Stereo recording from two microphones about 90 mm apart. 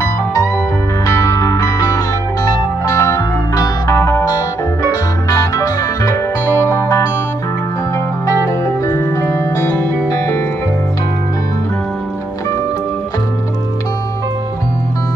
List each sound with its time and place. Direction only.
1.0 s music: 40° left (ahead or behind)
8.5 s music: 35° left (ahead or behind)